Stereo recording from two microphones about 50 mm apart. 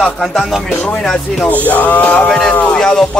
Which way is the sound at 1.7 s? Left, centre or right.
Left.